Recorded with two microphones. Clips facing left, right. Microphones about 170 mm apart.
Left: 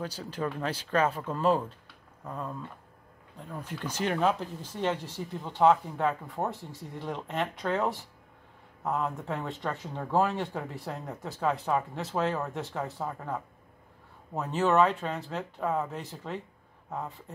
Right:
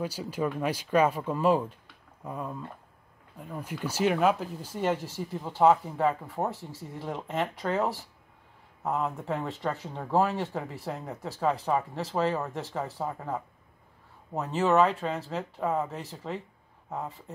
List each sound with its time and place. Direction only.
0.0 s speech: 10° right (ahead or behind)